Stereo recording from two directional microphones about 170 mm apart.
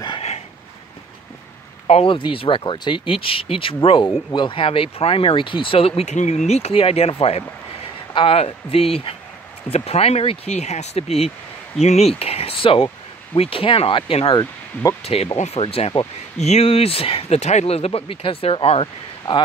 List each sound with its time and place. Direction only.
0.0 s a sound: 30° left (ahead or behind)
1.9 s speech: 35° left (ahead or behind)
14.4 s speech: 15° left (ahead or behind)
15.3 s speech: 40° left (ahead or behind)